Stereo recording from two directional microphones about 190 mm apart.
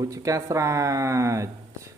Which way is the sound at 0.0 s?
15° right (ahead or behind).